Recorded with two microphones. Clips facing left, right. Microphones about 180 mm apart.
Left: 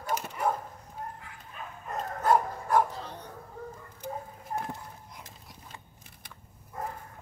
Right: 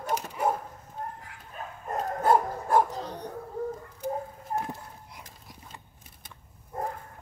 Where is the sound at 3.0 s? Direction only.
40° right (ahead or behind).